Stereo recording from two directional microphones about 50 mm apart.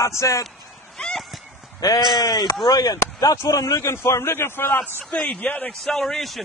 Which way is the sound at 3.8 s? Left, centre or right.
Left.